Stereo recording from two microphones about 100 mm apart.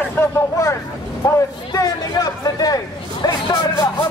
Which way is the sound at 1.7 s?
35° left (ahead or behind).